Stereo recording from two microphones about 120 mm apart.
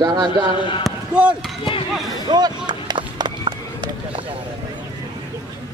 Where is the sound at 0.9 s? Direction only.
Centre (ahead or behind).